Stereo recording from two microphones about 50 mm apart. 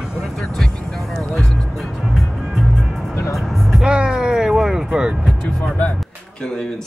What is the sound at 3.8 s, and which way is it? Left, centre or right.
Vehicle, centre.